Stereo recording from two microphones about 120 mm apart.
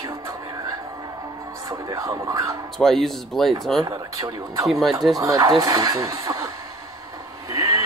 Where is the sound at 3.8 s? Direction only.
30° right (ahead or behind).